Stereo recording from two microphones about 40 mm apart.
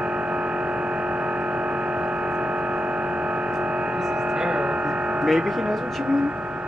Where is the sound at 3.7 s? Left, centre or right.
Centre.